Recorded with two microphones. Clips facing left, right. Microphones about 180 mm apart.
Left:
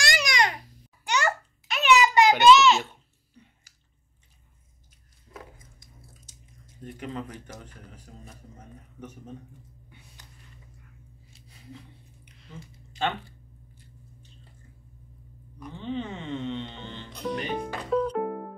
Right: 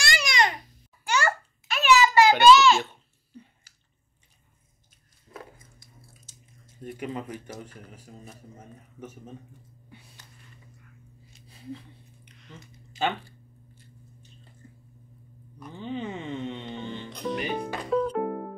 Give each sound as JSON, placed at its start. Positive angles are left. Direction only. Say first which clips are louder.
{"t": 0.0, "sound": "babbling", "louder": "even", "side_deg": 15}
{"t": 5.3, "sound": "squish", "louder": "right 1 dB", "side_deg": 15}
{"t": 6.8, "sound": "music", "louder": "right 2 dB", "side_deg": -10}
{"t": 12.5, "sound": "speech", "louder": "left 3 dB", "side_deg": 5}
{"t": 13.0, "sound": "speech", "louder": "right 1 dB", "side_deg": -5}
{"t": 15.6, "sound": "music", "louder": "left 1 dB", "side_deg": -10}
{"t": 17.4, "sound": "speech", "louder": "right 1 dB", "side_deg": -5}